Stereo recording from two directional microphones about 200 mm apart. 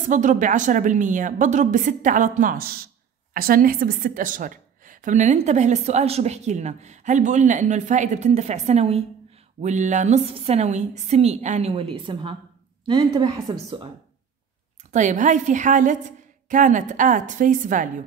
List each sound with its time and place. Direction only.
0.1 s a woman's voice: 40° right (ahead or behind); by 13.8 s 20° right (ahead or behind)
14.9 s a woman's voice: 35° right (ahead or behind)